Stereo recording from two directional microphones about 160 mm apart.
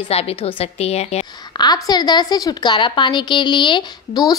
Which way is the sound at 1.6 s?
25° left (ahead or behind).